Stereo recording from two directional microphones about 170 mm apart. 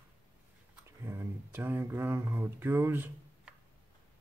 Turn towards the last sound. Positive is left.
turn(degrees=-15)  # may be behind; listen again after turning